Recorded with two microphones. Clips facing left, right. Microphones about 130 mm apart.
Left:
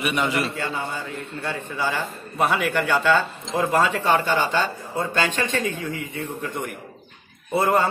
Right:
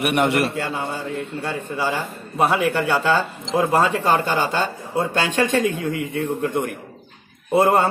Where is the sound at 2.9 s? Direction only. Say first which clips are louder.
Right 1 dB; 35° right (ahead or behind).